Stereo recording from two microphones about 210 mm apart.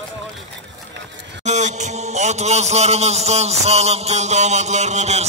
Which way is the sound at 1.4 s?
35° right (ahead or behind).